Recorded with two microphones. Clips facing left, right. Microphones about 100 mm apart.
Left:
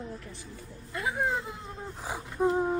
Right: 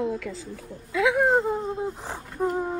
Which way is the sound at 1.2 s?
50° right (ahead or behind).